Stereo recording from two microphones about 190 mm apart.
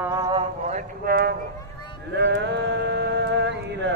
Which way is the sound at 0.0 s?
20° right (ahead or behind).